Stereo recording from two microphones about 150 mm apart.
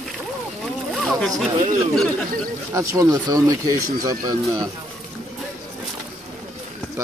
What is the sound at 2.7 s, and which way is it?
Speech, 20° right (ahead or behind).